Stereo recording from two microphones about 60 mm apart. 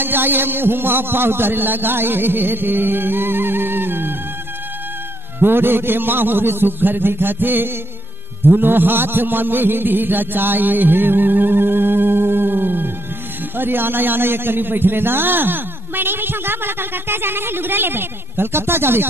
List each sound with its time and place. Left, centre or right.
0.0 s a man's voice: right
5.4 s a man's voice: right
8.5 s a sound: right
13.6 s a man's voice: right